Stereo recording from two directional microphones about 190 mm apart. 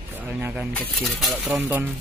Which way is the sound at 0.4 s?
10° right (ahead or behind).